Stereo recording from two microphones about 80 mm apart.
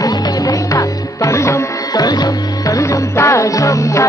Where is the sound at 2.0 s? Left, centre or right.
Left.